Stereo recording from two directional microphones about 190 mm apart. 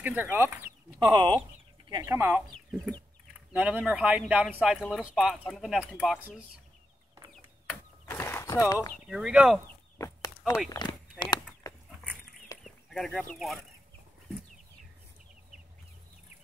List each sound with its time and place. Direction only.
0.0 s speech: 10° right (ahead or behind)
3.5 s speech: 10° right (ahead or behind)
7.3 s chicken: 5° left (ahead or behind)
9.0 s speech: 5° right (ahead or behind)
9.9 s a sound: 15° left (ahead or behind)
12.6 s speech: centre (ahead or behind)